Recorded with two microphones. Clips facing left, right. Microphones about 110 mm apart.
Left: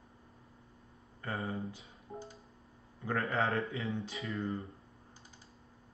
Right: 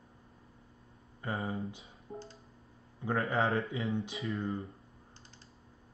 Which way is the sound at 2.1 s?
Centre (ahead or behind).